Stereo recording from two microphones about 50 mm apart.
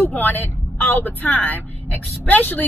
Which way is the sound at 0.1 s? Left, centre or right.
Left.